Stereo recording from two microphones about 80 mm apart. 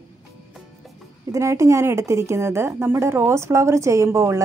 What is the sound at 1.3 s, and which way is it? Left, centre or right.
A woman's voice, right.